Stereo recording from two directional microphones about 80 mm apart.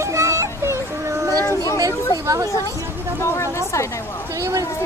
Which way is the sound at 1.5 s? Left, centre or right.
Left.